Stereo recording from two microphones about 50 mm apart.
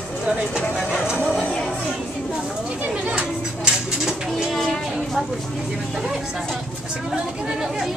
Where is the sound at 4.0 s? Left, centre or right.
Centre.